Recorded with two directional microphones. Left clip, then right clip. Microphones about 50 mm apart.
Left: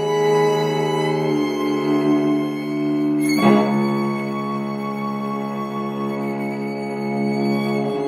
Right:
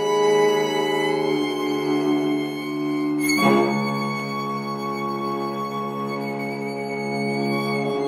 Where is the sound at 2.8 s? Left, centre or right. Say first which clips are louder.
Left 4 dB; right.